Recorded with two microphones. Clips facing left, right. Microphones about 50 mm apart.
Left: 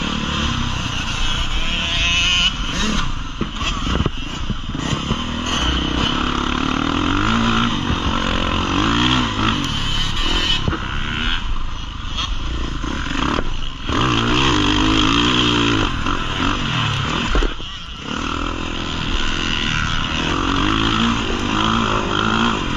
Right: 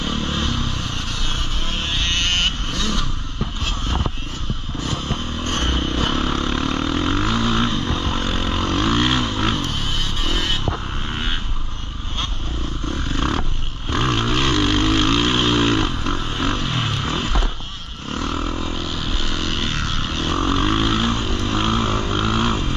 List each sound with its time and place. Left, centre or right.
0.0 s vehicle: left
10.3 s vehicle: left
10.7 s vehicle: left
13.2 s vehicle: left